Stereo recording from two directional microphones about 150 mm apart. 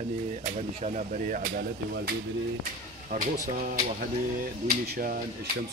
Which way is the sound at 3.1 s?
75° right (ahead or behind).